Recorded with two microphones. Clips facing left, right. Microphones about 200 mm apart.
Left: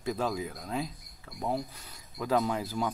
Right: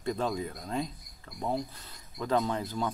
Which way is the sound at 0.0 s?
5° left (ahead or behind).